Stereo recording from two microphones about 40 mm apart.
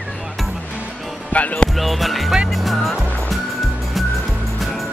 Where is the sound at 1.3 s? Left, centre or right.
Left.